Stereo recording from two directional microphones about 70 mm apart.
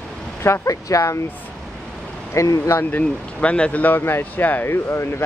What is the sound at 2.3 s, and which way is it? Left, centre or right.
Speech, left.